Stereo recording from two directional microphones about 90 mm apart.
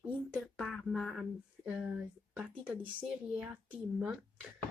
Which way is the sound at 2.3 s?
15° right (ahead or behind).